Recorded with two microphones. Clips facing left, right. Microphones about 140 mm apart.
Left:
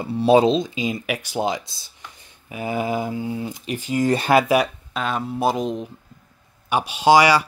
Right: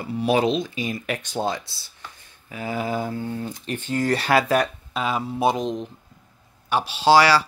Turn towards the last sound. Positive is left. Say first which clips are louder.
# left 1 dB
turn(degrees=15)  # may be behind; listen again after turning